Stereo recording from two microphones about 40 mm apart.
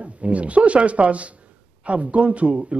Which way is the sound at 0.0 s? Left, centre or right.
Right.